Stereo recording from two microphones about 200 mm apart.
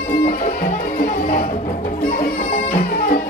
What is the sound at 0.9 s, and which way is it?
Music, 45° left (ahead or behind).